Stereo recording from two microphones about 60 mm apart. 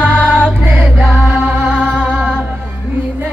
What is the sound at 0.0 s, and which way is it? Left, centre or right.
Music, right.